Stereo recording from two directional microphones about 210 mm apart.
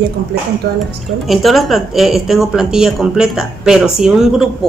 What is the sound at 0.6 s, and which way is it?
Speech, 50° right (ahead or behind).